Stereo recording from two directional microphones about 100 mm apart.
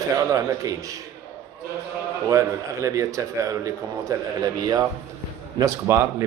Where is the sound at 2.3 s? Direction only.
30° right (ahead or behind).